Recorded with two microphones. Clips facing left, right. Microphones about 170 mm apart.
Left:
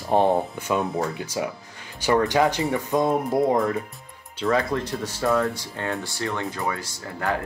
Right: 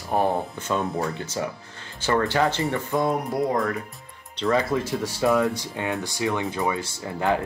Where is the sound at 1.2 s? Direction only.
10° left (ahead or behind).